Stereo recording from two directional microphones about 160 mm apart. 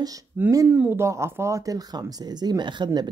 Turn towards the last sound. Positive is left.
turn(degrees=-25)  # may be behind; listen again after turning